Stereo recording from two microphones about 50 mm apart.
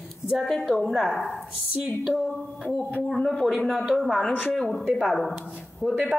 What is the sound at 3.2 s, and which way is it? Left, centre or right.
Speech, centre.